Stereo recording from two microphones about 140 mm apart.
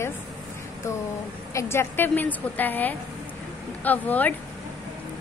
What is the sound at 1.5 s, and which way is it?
A woman's voice, 20° left (ahead or behind).